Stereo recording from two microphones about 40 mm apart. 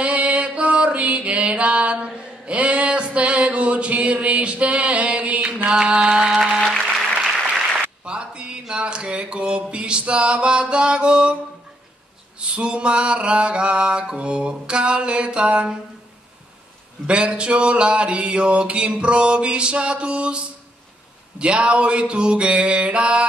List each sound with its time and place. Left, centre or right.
0.0 s mantra: right
5.7 s mantra: right
8.0 s mantra: right
12.4 s mantra: right
17.0 s mantra: right